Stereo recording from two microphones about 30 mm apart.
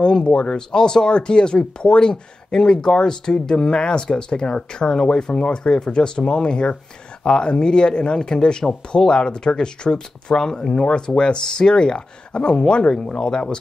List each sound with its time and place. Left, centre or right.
0.0 s speech: left